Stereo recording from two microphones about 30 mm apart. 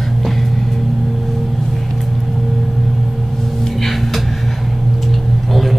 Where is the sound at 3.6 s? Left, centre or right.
Centre.